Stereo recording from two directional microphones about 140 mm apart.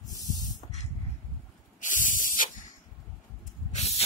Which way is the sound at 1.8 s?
70° left (ahead or behind).